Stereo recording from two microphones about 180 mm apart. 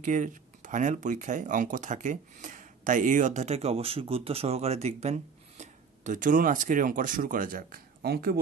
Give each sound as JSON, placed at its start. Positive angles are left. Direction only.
{"t": 0.0, "sound": "speech", "side_deg": -45}